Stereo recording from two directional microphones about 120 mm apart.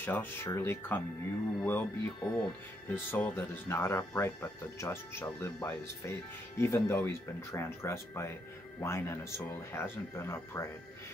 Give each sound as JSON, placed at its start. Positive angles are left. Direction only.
{"t": 0.0, "sound": "speech", "side_deg": 15}